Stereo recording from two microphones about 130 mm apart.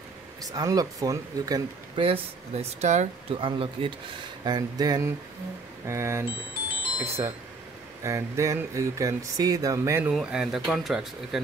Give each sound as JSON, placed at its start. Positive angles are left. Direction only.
{"t": 0.4, "sound": "speech", "side_deg": -30}
{"t": 2.0, "sound": "speech", "side_deg": -45}
{"t": 3.3, "sound": "speech", "side_deg": -45}
{"t": 4.5, "sound": "speech", "side_deg": -30}
{"t": 10.1, "sound": "speech", "side_deg": -5}